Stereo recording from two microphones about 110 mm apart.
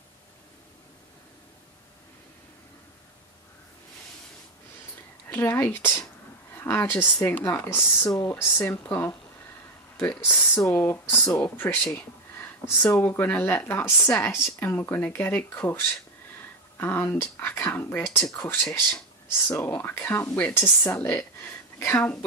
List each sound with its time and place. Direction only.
5.3 s a woman's voice: 20° left (ahead or behind)
12.8 s a woman's voice: 25° left (ahead or behind)